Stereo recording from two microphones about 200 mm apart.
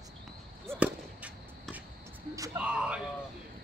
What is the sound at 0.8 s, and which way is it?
Basketball bounce, 5° right (ahead or behind).